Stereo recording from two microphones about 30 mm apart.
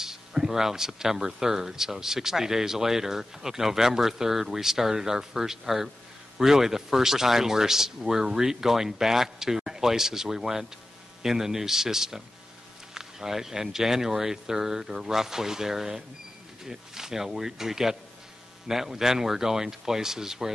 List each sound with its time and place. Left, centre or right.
0.0 s speech: centre